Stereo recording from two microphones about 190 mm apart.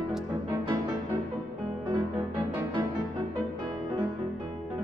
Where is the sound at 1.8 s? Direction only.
20° right (ahead or behind).